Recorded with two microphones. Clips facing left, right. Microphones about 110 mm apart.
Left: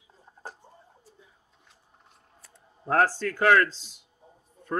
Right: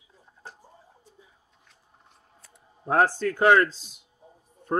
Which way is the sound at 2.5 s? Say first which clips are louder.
Right 1 dB; 15° right (ahead or behind).